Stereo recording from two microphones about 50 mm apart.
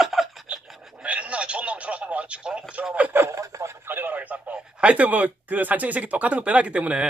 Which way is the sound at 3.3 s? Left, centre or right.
Right.